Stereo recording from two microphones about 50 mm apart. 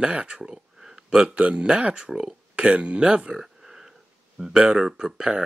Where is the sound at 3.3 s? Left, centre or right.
Centre.